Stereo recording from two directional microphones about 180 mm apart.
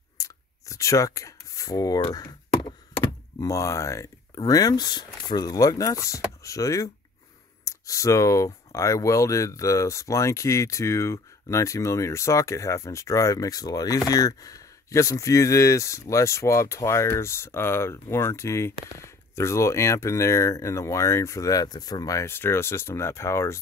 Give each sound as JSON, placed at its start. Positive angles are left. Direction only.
{"t": 0.2, "sound": "speech", "side_deg": 15}